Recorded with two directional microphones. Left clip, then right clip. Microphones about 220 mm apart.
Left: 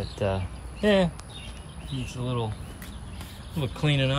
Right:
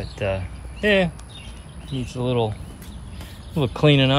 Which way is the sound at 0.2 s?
15° left (ahead or behind).